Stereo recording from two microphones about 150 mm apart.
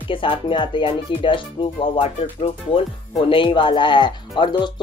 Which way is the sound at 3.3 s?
35° left (ahead or behind).